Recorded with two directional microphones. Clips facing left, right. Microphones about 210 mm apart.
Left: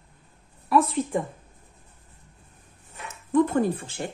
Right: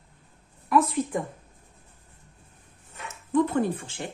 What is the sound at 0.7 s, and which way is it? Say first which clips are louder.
Speech: left 1 dB; 30° left (ahead or behind).